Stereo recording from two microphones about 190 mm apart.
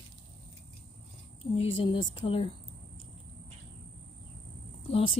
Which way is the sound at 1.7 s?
25° left (ahead or behind).